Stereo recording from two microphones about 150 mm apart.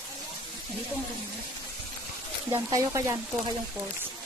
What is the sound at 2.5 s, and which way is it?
Speech, 20° right (ahead or behind).